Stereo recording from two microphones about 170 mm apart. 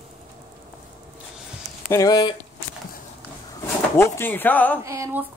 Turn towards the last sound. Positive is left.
turn(degrees=-15)  # may be behind; listen again after turning